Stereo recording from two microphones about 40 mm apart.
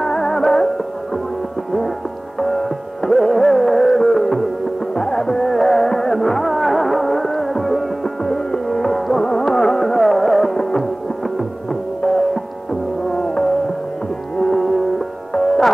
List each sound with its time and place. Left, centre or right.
0.0 s music: centre
2.4 s music: centre
10.5 s music: centre
12.0 s music: centre
14.6 s music: centre